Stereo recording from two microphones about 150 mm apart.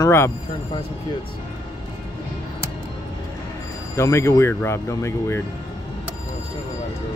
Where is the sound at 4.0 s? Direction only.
20° left (ahead or behind).